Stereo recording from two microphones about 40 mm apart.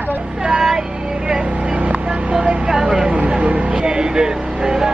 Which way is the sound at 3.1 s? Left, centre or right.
Right.